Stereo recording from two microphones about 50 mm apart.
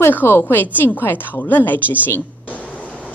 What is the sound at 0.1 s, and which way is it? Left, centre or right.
A woman's voice, left.